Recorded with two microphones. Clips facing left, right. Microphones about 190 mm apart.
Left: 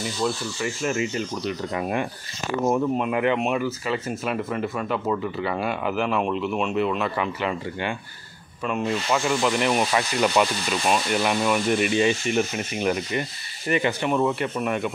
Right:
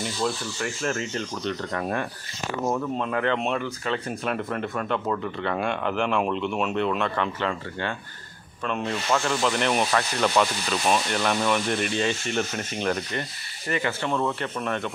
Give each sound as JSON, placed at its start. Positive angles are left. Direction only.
{"t": 0.2, "sound": "speech", "side_deg": 5}